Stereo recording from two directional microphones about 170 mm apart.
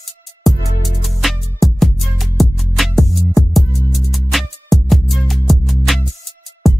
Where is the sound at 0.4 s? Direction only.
Centre (ahead or behind).